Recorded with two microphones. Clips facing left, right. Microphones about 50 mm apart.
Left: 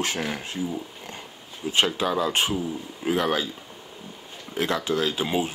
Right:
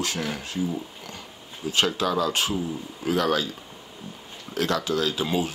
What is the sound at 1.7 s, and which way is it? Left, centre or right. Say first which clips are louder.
Speech: left 1 dB; left.